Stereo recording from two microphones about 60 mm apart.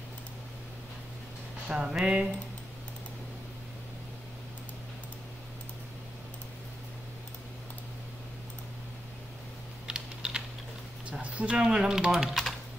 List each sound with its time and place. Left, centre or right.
1.7 s speech: centre
9.8 s typing: centre
11.1 s speech: right; by 12.4 s centre